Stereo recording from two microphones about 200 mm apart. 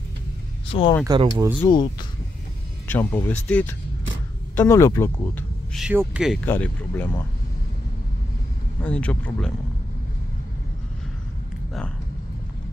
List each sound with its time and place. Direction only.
0.7 s speech: 25° left (ahead or behind)
1.0 s speech: 20° right (ahead or behind)
1.7 s speech: 20° left (ahead or behind)
2.9 s speech: 10° left (ahead or behind)
5.8 s speech: 5° right (ahead or behind)
6.4 s speech: 10° left (ahead or behind)
8.8 s speech: 5° left (ahead or behind)